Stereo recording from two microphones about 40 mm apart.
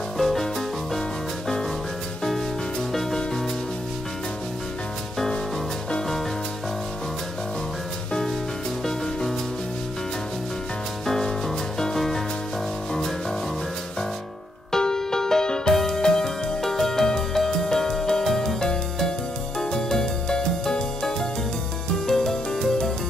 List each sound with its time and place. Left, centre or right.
0.2 s music: centre
2.9 s music: centre
11.1 s music: centre
14.7 s music: centre
15.7 s music: centre